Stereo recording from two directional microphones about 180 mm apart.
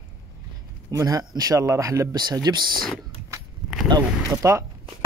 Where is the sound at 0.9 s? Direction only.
20° right (ahead or behind).